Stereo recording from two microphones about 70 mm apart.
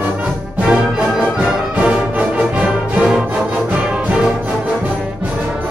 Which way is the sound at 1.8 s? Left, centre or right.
Centre.